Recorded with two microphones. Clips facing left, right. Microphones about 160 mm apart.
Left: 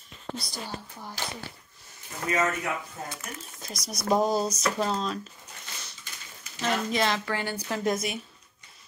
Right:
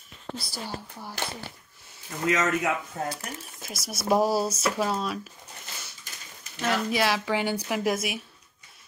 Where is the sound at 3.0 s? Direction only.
60° right (ahead or behind).